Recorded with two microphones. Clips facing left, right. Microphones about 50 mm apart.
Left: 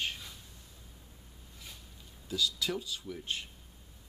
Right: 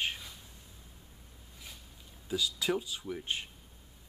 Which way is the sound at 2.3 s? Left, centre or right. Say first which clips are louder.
Right 2 dB; centre.